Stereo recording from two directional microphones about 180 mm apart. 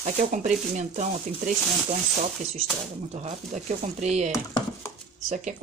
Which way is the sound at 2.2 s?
40° right (ahead or behind).